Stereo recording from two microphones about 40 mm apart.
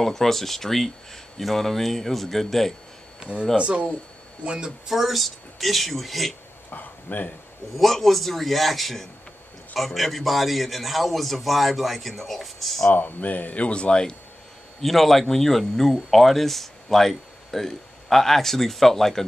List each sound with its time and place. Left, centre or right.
0.0 s speech: centre
3.2 s speech: centre
3.5 s speech: right
4.8 s speech: centre
6.7 s speech: left
7.7 s speech: centre
12.9 s speech: left
14.8 s speech: centre